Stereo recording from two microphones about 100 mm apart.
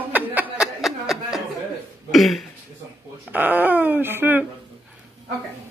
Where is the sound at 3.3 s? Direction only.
20° right (ahead or behind).